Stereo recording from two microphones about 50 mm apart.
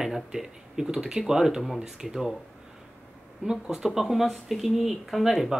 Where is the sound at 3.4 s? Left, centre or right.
Centre.